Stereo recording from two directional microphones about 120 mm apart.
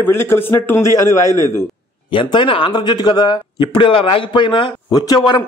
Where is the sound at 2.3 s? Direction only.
45° left (ahead or behind).